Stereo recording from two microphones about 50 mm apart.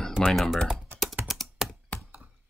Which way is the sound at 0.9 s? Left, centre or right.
Right.